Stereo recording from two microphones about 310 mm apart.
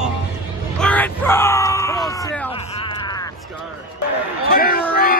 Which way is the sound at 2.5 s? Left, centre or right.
Centre.